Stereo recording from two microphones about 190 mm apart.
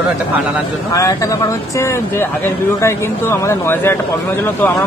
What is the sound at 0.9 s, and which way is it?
Speech, 15° left (ahead or behind).